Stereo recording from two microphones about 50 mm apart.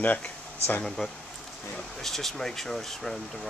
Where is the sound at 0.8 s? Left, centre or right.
Centre.